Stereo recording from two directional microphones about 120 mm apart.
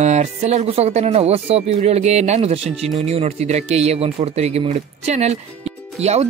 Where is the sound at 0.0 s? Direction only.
70° right (ahead or behind).